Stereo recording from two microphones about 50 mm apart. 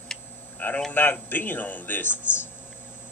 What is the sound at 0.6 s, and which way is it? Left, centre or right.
A man's voice, left.